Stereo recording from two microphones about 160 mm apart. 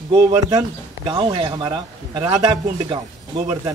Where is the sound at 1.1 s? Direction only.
30° right (ahead or behind).